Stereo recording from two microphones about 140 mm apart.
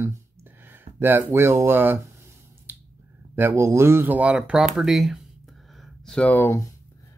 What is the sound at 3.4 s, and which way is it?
Speech, 15° right (ahead or behind).